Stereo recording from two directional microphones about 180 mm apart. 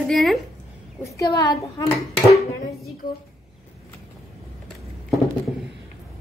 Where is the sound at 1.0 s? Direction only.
20° left (ahead or behind).